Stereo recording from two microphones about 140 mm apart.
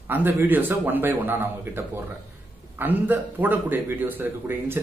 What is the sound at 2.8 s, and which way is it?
A man's voice, 15° right (ahead or behind).